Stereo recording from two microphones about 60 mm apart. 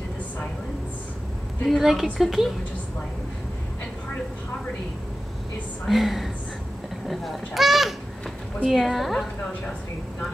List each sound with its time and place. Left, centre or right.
1.7 s speech: centre
5.9 s speech: centre